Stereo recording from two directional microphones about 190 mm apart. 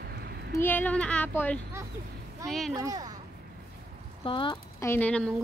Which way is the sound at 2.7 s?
20° right (ahead or behind).